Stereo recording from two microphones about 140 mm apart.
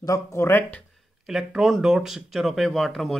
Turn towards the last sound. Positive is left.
turn(degrees=0)  # may be behind; listen again after turning